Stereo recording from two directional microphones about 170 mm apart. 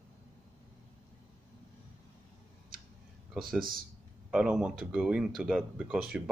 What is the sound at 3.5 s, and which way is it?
Speech, 55° right (ahead or behind).